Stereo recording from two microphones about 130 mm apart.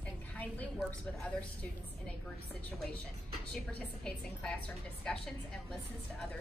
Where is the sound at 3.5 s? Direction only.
10° left (ahead or behind).